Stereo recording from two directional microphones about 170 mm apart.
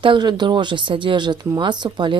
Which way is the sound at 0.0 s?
30° right (ahead or behind).